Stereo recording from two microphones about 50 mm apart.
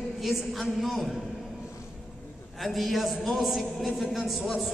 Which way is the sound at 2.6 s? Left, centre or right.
Centre.